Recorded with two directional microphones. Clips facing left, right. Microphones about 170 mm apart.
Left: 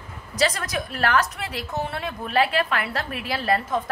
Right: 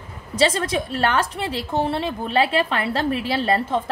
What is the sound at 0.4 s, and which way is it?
A woman's voice, 25° right (ahead or behind).